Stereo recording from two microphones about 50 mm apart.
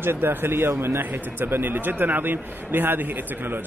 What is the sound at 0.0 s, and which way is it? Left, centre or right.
Speech, right.